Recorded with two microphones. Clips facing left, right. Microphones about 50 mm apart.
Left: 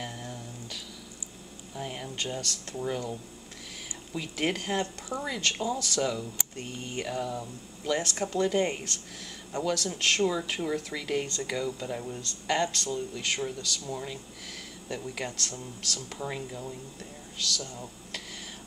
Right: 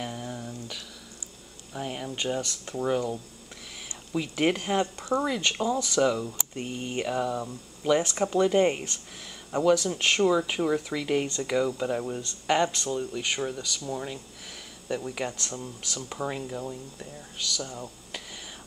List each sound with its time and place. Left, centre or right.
0.0 s a sound: centre
1.7 s speech: centre
11.8 s speech: right; by 16.5 s centre
17.4 s speech: centre